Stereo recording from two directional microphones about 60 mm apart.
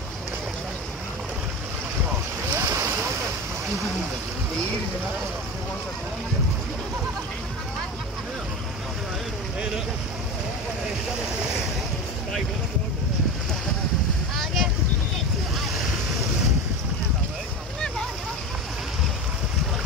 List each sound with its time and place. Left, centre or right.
2.5 s boat: right
14.3 s boat: centre